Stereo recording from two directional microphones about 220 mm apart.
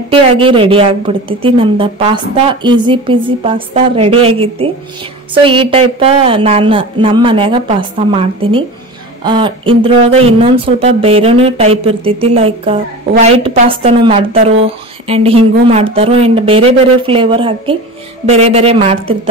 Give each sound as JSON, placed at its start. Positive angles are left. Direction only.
{"t": 0.1, "sound": "speech", "side_deg": -25}